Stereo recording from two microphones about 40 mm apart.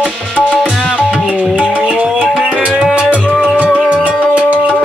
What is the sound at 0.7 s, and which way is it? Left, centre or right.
Music, centre.